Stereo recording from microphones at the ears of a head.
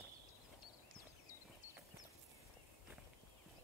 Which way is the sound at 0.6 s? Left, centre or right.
Left.